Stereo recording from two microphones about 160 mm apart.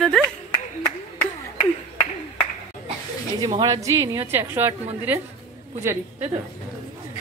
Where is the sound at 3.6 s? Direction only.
20° right (ahead or behind).